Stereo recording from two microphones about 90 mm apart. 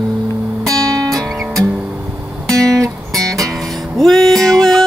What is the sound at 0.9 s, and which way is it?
Music, 40° right (ahead or behind).